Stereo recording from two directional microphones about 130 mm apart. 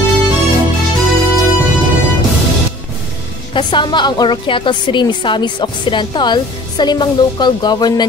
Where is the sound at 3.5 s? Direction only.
35° left (ahead or behind).